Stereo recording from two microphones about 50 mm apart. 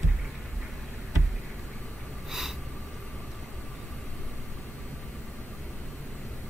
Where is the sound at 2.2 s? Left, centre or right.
Centre.